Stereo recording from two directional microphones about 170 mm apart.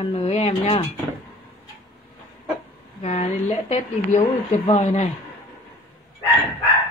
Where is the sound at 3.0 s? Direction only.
45° left (ahead or behind).